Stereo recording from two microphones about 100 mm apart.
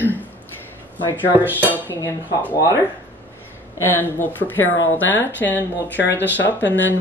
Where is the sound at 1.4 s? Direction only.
20° right (ahead or behind).